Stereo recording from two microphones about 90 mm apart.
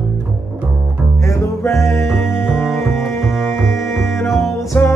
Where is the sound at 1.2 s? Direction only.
30° left (ahead or behind).